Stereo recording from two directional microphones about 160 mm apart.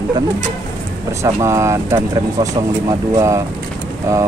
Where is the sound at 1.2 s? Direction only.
20° right (ahead or behind).